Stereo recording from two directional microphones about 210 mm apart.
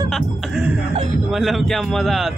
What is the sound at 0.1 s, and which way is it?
Music, 5° right (ahead or behind).